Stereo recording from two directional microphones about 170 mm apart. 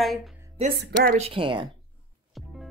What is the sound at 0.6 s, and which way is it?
Speech, 35° right (ahead or behind).